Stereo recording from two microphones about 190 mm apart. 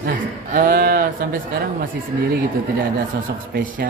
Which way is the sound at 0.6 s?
50° right (ahead or behind).